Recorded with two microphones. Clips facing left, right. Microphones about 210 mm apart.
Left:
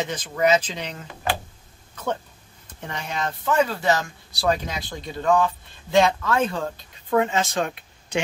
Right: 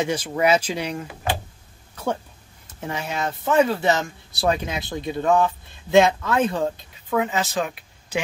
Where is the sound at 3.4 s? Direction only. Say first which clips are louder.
Right 3 dB; 25° right (ahead or behind).